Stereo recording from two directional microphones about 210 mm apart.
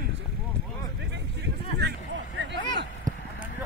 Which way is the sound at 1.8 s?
50° right (ahead or behind).